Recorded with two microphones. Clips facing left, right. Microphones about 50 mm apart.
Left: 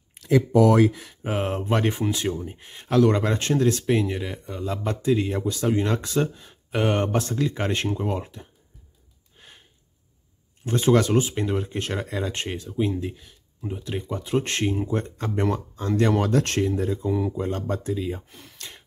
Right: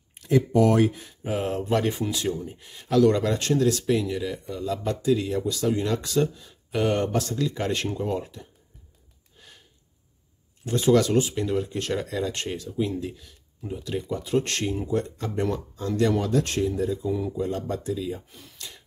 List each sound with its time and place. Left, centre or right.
1.2 s speech: left
9.4 s a sound: left
10.6 s speech: left